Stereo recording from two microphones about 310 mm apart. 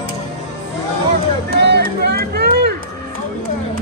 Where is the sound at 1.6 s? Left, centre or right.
Right.